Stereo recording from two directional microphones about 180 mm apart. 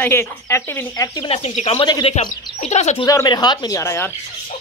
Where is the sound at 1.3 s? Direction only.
35° left (ahead or behind).